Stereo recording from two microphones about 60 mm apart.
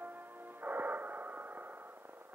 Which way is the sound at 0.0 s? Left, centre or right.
Right.